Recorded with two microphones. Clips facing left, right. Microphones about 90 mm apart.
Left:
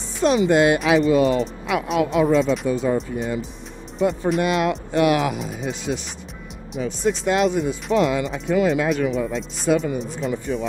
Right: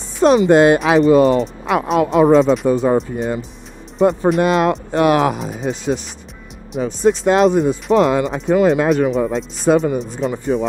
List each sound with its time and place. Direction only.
0.2 s speech: 40° right (ahead or behind)
6.7 s speech: 55° right (ahead or behind)
7.2 s speech: 40° right (ahead or behind)